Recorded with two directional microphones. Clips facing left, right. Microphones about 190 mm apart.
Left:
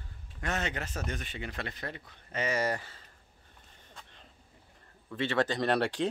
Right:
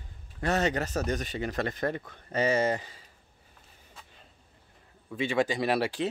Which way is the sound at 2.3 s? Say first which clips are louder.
Right 5 dB; 30° right (ahead or behind).